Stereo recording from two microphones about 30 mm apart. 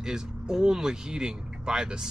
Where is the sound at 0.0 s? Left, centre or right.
Right.